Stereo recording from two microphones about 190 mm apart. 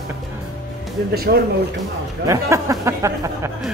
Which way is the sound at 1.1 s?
55° right (ahead or behind).